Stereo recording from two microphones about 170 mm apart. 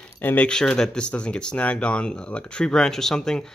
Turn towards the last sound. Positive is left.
turn(degrees=5)  # may be behind; listen again after turning